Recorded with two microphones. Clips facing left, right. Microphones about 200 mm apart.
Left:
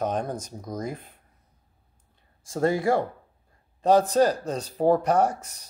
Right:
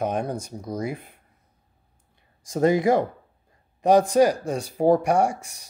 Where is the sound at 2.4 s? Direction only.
20° right (ahead or behind).